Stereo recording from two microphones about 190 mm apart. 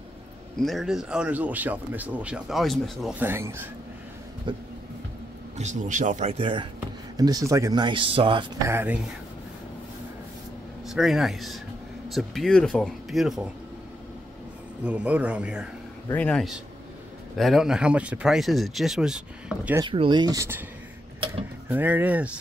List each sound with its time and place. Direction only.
0.6 s speech: centre (ahead or behind)
4.5 s speech: 25° right (ahead or behind)
5.6 s speech: 40° right (ahead or behind)
8.6 s speech: 10° right (ahead or behind)
10.9 s speech: centre (ahead or behind)
14.8 s speech: 5° right (ahead or behind)
16.1 s speech: 10° left (ahead or behind)
19.8 s speech: 25° right (ahead or behind)
21.6 s speech: 10° right (ahead or behind)